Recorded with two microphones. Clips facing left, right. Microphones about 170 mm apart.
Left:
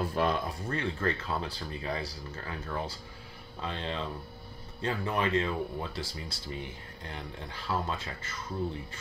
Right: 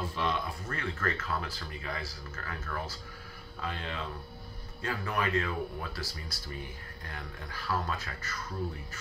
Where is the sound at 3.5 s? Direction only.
30° left (ahead or behind).